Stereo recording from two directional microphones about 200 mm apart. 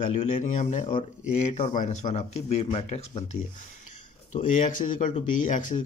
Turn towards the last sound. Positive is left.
turn(degrees=40)  # may be behind; listen again after turning